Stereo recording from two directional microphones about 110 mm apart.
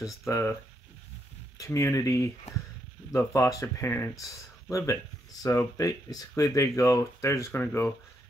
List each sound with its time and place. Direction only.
0.3 s speech: 25° left (ahead or behind)
1.6 s speech: 30° left (ahead or behind)